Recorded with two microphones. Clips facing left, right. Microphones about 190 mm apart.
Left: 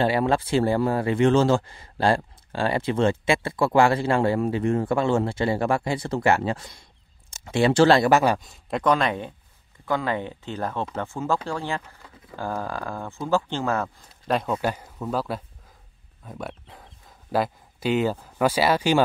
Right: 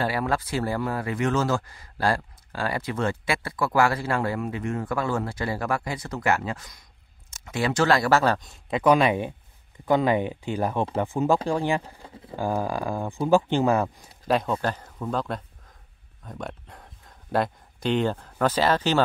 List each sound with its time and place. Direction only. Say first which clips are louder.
0.0 s speech: left 4 dB; 25° left (ahead or behind)
8.1 s speech: left 2 dB; 15° left (ahead or behind)
8.4 s speech: even; centre (ahead or behind)
8.9 s speech: right 3 dB; 10° right (ahead or behind)
11.8 s speech: right 5 dB; 30° right (ahead or behind)
12.4 s speech: right 3 dB; 15° right (ahead or behind)
14.2 s speech: even; centre (ahead or behind)